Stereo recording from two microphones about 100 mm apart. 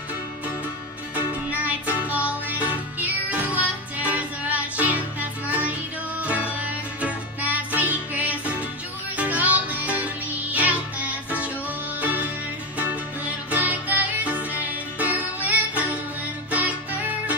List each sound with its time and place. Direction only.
1.1 s music: 15° right (ahead or behind)